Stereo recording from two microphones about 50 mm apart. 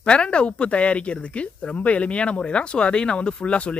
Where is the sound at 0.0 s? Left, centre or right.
Left.